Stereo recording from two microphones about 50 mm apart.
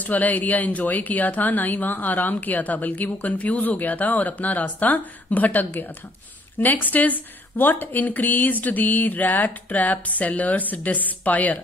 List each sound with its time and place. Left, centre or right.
0.0 s speech: left